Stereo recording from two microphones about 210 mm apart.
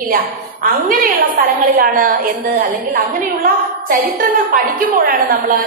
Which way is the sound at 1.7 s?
45° right (ahead or behind).